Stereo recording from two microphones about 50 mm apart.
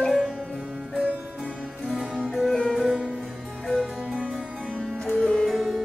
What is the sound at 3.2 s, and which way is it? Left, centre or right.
Harpsichord, centre.